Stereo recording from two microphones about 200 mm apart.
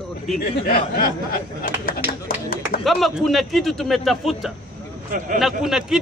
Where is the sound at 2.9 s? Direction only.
Centre (ahead or behind).